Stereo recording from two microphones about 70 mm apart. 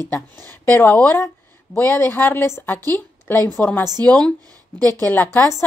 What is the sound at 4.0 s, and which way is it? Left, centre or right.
Speech, centre.